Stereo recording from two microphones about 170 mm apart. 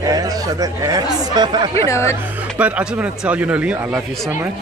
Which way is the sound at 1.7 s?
15° left (ahead or behind).